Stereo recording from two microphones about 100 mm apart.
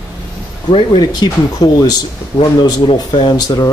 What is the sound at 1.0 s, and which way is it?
Speech, 45° left (ahead or behind).